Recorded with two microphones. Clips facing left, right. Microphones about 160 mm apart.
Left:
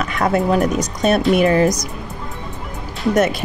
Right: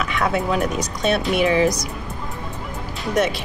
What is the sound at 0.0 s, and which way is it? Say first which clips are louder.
Speech: left 4 dB; 45° left (ahead or behind).